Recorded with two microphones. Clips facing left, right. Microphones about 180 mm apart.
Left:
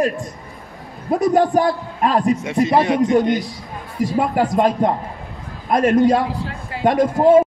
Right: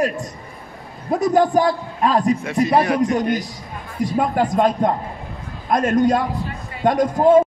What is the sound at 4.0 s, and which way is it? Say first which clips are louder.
A man's voice: left 1 dB; 5° left (ahead or behind).